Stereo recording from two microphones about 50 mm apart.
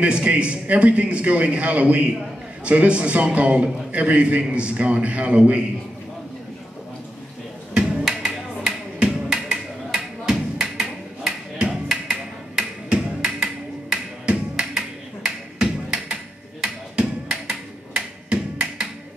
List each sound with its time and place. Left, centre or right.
0.0 s a man's voice: right
7.7 s music: centre
9.9 s a sound: centre